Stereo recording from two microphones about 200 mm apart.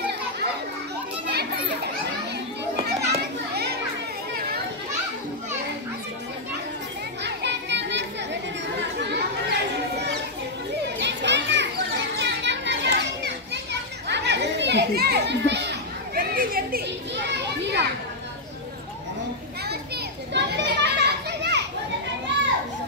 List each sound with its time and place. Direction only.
2.8 s children playing: 50° right (ahead or behind)
7.2 s children playing: 60° right (ahead or behind)
9.0 s children playing: 55° right (ahead or behind)
16.2 s children playing: 45° right (ahead or behind)
20.3 s children playing: 55° right (ahead or behind)